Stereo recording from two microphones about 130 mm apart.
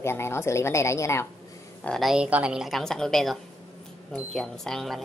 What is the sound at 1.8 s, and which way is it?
A woman's voice, 5° left (ahead or behind).